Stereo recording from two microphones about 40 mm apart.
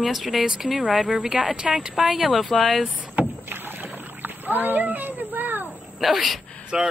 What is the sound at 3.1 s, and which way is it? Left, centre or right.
Rowboat, right.